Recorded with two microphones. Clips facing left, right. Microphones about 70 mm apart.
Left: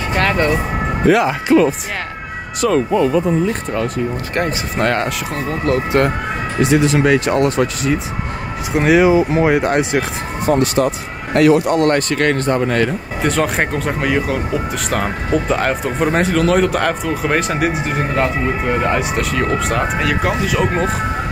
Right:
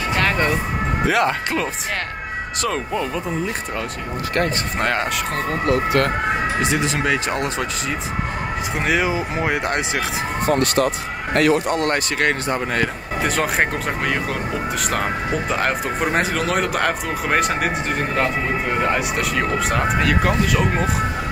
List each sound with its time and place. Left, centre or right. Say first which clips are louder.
1.0 s speech: left 6 dB; centre
4.7 s speech: left 5 dB; centre
5.7 s speech: left 3 dB; left
6.6 s speech: left 7 dB; centre
11.5 s speech: left 5 dB; left
11.9 s speech: left 5 dB; centre